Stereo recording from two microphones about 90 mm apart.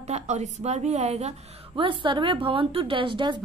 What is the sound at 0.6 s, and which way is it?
Speech, 90° right.